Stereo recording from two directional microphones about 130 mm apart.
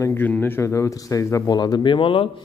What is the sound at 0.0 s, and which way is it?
A man's voice, 15° left (ahead or behind).